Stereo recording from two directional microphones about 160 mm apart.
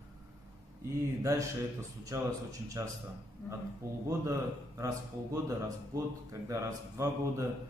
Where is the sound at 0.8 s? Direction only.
15° right (ahead or behind).